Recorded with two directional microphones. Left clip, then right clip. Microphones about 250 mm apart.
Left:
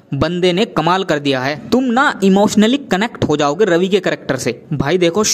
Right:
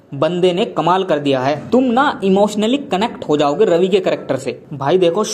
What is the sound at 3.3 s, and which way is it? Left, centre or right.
Speech, left.